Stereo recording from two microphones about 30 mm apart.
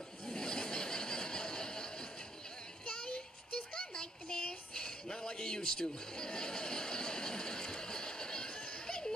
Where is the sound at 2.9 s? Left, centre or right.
Left.